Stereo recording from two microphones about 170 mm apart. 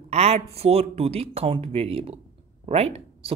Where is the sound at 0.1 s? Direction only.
40° right (ahead or behind).